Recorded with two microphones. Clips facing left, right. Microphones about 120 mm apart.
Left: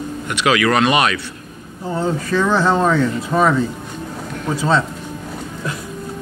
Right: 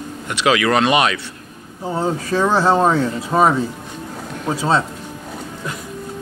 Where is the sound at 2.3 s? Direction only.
35° right (ahead or behind).